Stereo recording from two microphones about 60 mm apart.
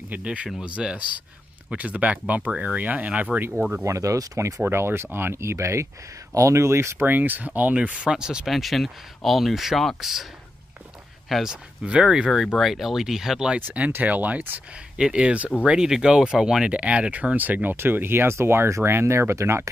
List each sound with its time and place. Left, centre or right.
0.1 s speech: right
3.3 s speech: right
3.8 s speech: right
4.6 s speech: right
7.1 s speech: right; by 8.5 s centre
8.5 s speech: centre
11.2 s speech: centre
11.8 s speech: centre
12.5 s speech: centre
13.6 s speech: right
15.0 s speech: centre; by 19.7 s right